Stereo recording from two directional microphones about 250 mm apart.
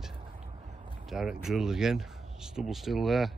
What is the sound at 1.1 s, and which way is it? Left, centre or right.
Speech, centre.